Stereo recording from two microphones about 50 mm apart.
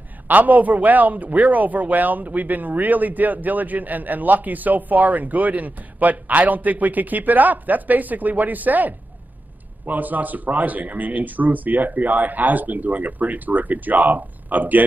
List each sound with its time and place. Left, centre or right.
0.3 s speech: right